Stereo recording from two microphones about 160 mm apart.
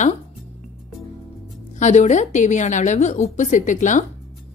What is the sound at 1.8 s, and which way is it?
A woman's voice, 45° left (ahead or behind).